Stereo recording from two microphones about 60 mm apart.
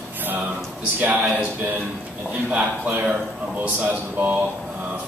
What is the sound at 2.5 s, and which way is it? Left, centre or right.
A man's voice, right.